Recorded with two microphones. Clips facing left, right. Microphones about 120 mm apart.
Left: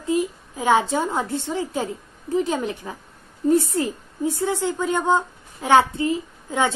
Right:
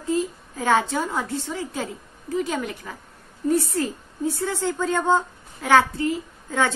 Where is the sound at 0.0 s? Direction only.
15° left (ahead or behind).